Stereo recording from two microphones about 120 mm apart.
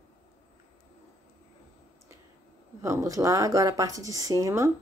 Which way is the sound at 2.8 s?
25° right (ahead or behind).